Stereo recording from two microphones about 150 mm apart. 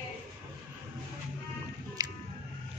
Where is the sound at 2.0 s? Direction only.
25° right (ahead or behind).